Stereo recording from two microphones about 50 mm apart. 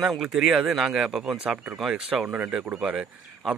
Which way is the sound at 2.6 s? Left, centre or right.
Right.